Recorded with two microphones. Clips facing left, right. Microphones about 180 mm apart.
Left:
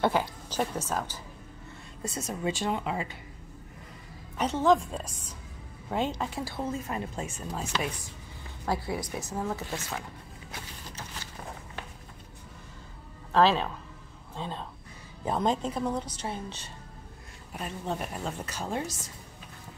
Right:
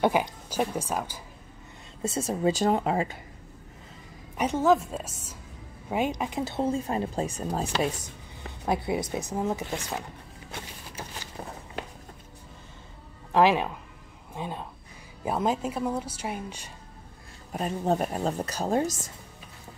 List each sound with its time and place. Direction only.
0.0 s speech: 15° right (ahead or behind)
2.0 s speech: 30° right (ahead or behind); by 3.2 s 45° right (ahead or behind)
4.4 s a woman's voice: 10° right (ahead or behind); by 8.0 s 35° right (ahead or behind)
8.6 s speech: 20° right (ahead or behind)
13.3 s speech: 15° right (ahead or behind)
17.5 s speech: 40° right (ahead or behind)